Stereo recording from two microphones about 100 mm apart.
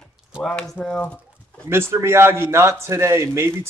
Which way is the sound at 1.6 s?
25° right (ahead or behind).